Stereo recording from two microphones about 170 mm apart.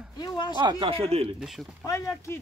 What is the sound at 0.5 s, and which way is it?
Speech, 30° right (ahead or behind).